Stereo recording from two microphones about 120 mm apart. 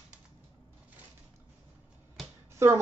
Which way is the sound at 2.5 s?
25° right (ahead or behind).